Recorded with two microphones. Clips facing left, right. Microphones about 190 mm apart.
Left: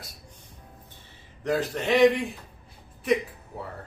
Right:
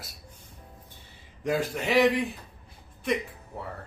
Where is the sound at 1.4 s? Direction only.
10° right (ahead or behind).